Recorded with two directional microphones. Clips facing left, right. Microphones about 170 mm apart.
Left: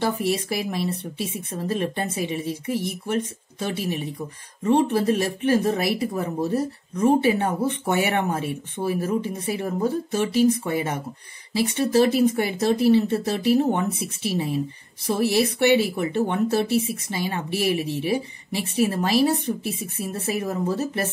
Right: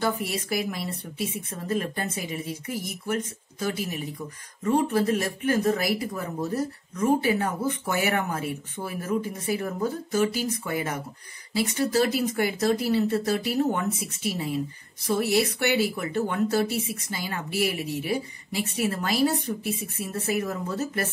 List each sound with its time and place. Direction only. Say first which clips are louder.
0.0 s speech: left 4 dB; 30° left (ahead or behind)